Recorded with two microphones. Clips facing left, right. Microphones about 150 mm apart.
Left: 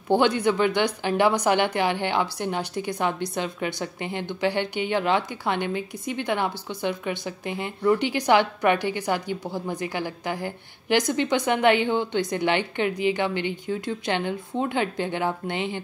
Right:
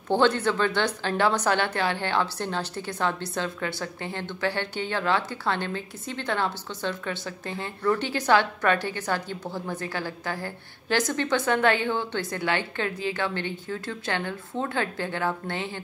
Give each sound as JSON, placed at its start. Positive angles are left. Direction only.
{"t": 0.1, "sound": "speech", "side_deg": 15}